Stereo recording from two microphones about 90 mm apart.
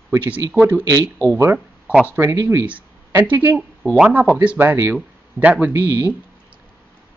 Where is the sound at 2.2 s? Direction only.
35° right (ahead or behind).